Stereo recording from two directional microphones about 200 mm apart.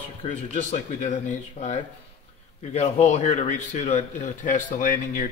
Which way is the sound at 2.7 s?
30° left (ahead or behind).